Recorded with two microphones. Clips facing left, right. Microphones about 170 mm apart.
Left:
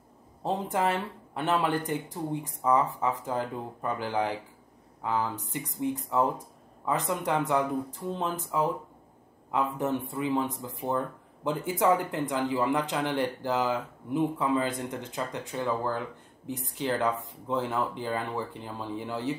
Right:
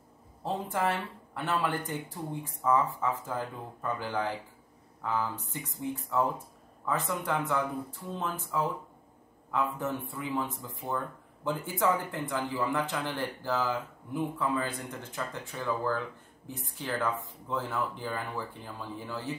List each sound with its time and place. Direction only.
0.4 s speech: 15° left (ahead or behind)